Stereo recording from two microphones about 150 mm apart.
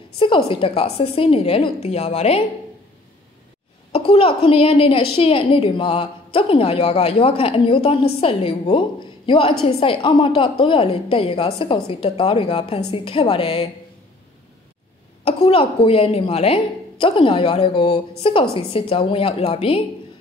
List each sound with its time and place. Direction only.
0.5 s a woman's voice: 35° left (ahead or behind)
3.9 s a woman's voice: 40° left (ahead or behind)
15.2 s a woman's voice: 40° left (ahead or behind)